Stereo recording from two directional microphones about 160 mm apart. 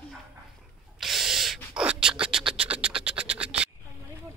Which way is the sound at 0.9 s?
Centre (ahead or behind).